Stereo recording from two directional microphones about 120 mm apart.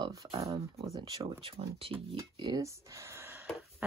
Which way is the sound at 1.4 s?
50° right (ahead or behind).